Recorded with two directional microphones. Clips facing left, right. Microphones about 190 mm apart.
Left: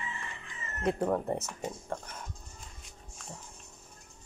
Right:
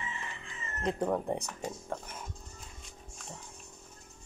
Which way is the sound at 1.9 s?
5° right (ahead or behind).